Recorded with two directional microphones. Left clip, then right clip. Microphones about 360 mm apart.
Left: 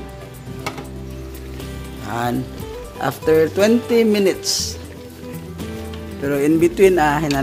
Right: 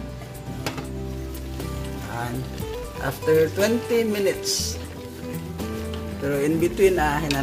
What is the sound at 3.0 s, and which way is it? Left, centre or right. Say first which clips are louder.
Speech: left 4 dB; left.